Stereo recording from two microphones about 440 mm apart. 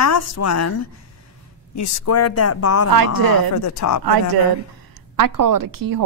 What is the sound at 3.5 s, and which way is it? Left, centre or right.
Speech, left.